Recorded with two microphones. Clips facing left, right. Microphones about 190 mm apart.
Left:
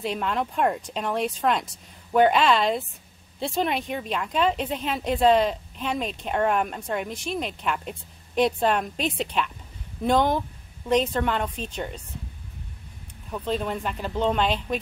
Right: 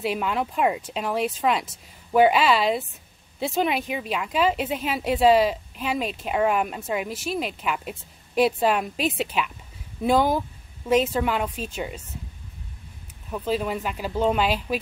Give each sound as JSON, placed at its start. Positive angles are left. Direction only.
{"t": 0.0, "sound": "speech", "side_deg": -5}
{"t": 13.3, "sound": "speech", "side_deg": -5}